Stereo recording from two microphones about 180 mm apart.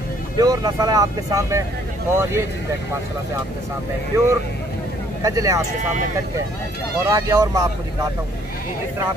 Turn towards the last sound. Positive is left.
turn(degrees=-20)  # may be behind; listen again after turning